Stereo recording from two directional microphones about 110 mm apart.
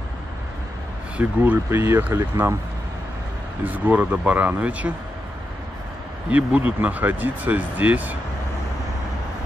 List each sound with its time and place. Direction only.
1.1 s speech: 15° right (ahead or behind)
3.6 s speech: 15° right (ahead or behind)
6.3 s speech: 15° right (ahead or behind)